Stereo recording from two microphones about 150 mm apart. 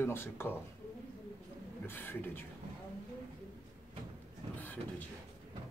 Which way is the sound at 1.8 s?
15° left (ahead or behind).